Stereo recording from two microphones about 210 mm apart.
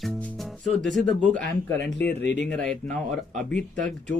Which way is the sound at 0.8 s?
Centre (ahead or behind).